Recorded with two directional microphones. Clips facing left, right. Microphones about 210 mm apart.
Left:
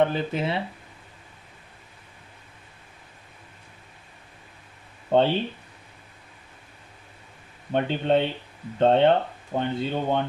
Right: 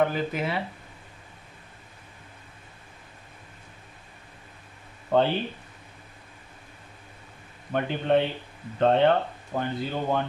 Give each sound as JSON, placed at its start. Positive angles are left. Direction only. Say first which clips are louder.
{"t": 0.0, "sound": "speech", "louder": "left 2 dB", "side_deg": 25}
{"t": 5.1, "sound": "speech", "louder": "left 2 dB", "side_deg": 25}
{"t": 7.7, "sound": "speech", "louder": "left 1 dB", "side_deg": 25}